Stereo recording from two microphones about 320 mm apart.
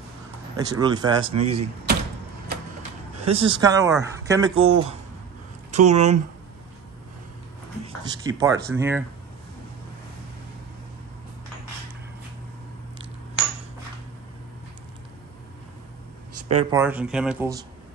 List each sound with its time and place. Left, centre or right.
0.6 s speech: centre
3.3 s speech: centre
7.8 s speech: centre
16.7 s speech: centre